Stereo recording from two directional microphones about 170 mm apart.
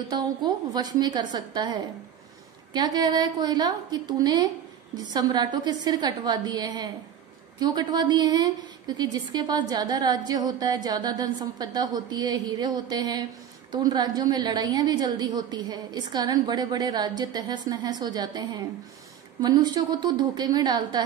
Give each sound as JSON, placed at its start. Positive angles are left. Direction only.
{"t": 0.1, "sound": "a woman's voice", "side_deg": -25}